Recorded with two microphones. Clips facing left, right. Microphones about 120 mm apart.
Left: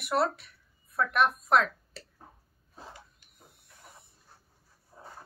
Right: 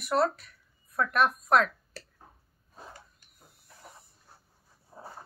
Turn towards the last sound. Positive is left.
turn(degrees=-25)  # may be behind; listen again after turning